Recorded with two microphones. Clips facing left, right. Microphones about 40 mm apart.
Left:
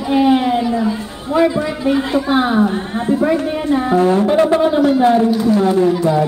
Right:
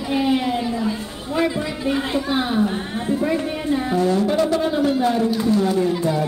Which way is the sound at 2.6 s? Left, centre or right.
Left.